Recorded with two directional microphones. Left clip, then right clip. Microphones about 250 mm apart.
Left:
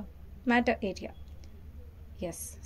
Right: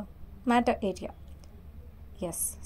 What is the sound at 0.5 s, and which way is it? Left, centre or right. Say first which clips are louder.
Speech: right 2 dB; centre.